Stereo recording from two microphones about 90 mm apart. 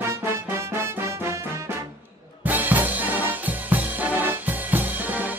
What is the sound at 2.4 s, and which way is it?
Brass instrument, 20° right (ahead or behind).